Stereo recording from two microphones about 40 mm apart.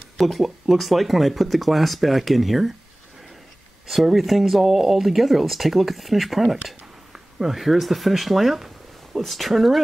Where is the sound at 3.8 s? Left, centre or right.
Centre.